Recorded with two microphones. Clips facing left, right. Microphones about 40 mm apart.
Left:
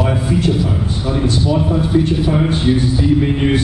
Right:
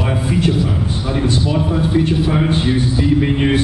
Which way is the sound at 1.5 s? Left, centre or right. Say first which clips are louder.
Left 2 dB; centre.